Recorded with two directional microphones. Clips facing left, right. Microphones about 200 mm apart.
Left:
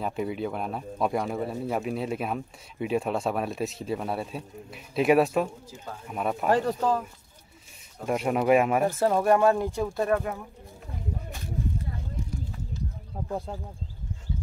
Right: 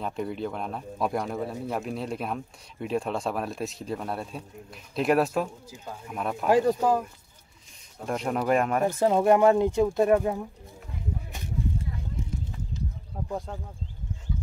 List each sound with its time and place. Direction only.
0.0 s speech: 5° left (ahead or behind)
6.5 s speech: 10° right (ahead or behind)
8.0 s speech: 5° left (ahead or behind)
8.8 s speech: 15° right (ahead or behind)